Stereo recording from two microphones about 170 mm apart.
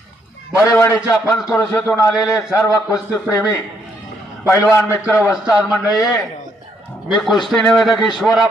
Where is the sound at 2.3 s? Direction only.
20° left (ahead or behind).